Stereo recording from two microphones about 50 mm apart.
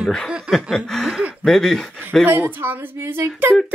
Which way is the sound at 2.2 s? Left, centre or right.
Right.